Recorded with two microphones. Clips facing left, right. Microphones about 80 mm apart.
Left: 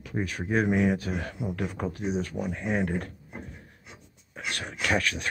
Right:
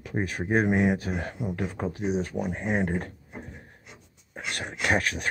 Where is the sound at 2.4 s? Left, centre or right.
Right.